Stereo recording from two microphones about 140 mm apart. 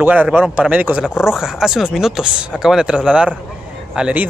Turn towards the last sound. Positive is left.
turn(degrees=-10)  # may be behind; listen again after turning